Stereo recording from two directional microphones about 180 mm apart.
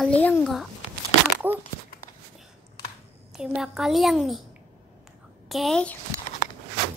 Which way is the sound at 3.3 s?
5° right (ahead or behind).